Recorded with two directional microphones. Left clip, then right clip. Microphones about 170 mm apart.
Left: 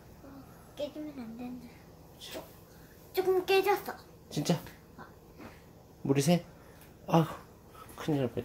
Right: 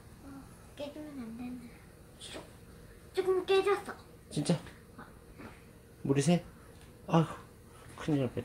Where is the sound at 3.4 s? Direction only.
40° left (ahead or behind).